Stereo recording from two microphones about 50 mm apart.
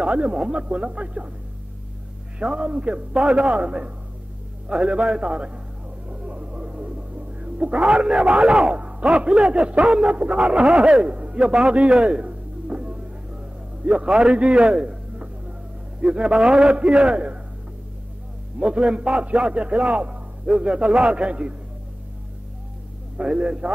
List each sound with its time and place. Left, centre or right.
0.0 s a man's voice: right
2.3 s a man's voice: right
6.0 s music: right
13.8 s a man's voice: centre
18.6 s a man's voice: right
23.1 s a man's voice: right